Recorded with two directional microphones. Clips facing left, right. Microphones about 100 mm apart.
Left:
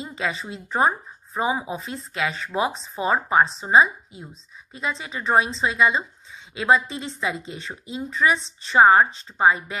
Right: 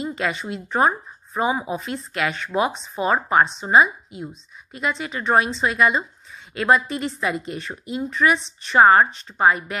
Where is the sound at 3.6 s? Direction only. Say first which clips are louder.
Right 1 dB; 25° left (ahead or behind).